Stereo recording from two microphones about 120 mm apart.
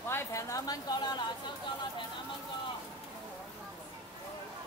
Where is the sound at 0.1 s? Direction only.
25° left (ahead or behind).